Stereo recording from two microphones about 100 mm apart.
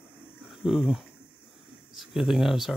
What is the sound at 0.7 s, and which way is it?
Speech, 5° right (ahead or behind).